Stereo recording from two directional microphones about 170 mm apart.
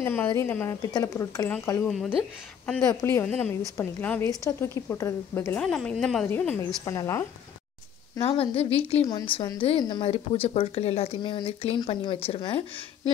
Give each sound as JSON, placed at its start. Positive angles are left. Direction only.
{"t": 0.0, "sound": "a woman's voice", "side_deg": 15}
{"t": 8.2, "sound": "a woman's voice", "side_deg": 35}